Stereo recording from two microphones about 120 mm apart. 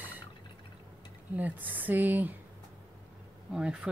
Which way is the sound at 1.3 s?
15° right (ahead or behind).